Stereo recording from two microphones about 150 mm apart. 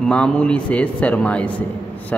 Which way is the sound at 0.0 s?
5° left (ahead or behind).